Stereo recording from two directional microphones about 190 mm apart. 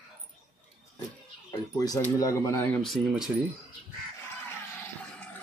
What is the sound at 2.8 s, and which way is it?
Speech, centre (ahead or behind).